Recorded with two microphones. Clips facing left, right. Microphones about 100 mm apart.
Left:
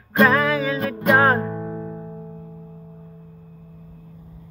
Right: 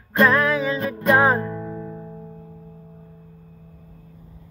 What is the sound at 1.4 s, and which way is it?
Music, 20° left (ahead or behind).